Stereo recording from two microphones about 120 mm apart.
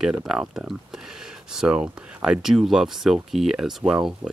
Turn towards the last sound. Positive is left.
turn(degrees=-5)  # may be behind; listen again after turning